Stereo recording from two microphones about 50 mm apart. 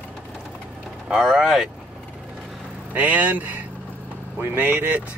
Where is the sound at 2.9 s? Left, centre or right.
Right.